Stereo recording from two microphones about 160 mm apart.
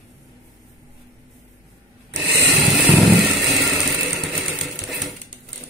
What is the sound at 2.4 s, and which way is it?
Vehicle, centre (ahead or behind).